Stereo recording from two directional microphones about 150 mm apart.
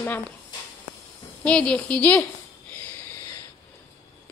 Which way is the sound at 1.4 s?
5° left (ahead or behind).